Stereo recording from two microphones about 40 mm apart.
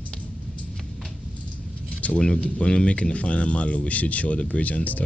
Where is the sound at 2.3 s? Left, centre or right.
Left.